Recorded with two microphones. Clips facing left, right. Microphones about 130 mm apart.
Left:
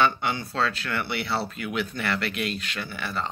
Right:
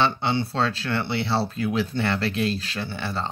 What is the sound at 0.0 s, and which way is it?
Speech, 30° right (ahead or behind).